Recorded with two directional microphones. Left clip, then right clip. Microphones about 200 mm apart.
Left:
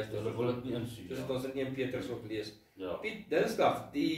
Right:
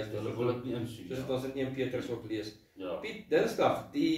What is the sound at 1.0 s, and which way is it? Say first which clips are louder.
Speech: right 3 dB; 10° right (ahead or behind).